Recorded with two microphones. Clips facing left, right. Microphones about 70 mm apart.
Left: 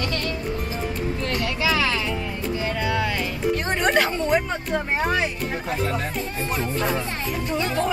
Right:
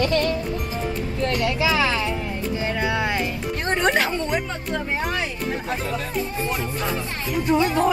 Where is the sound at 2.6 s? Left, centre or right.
Right.